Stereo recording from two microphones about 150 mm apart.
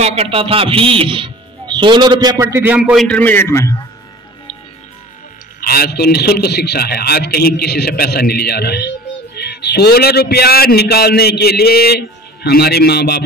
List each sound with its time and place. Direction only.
0.0 s a man's voice: 45° right (ahead or behind); by 2.8 s 15° right (ahead or behind)
2.8 s a man's voice: 5° right (ahead or behind)
3.1 s a man's voice: 10° left (ahead or behind)
5.6 s a man's voice: 90° left